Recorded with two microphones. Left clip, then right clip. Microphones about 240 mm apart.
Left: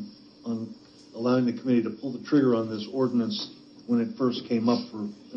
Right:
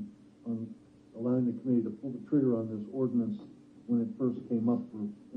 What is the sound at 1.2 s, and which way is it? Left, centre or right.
A man's voice, left.